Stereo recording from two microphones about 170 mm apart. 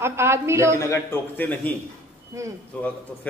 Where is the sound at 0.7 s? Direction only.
15° left (ahead or behind).